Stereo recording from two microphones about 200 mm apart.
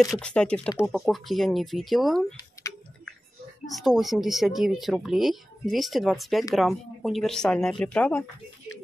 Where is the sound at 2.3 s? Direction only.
15° left (ahead or behind).